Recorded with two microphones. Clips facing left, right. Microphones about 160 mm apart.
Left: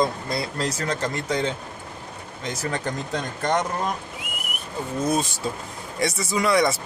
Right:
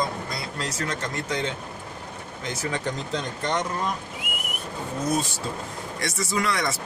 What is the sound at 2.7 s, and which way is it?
Speech, 45° left (ahead or behind).